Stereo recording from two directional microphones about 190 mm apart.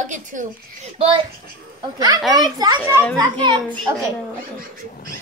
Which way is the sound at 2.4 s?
20° right (ahead or behind).